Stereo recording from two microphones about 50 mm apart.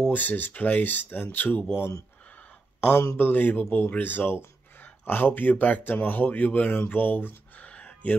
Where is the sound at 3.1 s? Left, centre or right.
Left.